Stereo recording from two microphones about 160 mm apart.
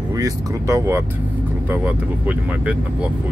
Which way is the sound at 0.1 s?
20° right (ahead or behind).